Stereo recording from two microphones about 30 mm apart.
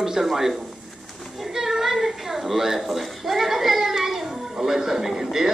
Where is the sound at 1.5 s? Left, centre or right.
Centre.